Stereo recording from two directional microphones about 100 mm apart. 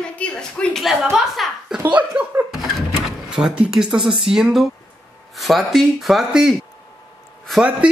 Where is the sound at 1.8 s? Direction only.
10° right (ahead or behind).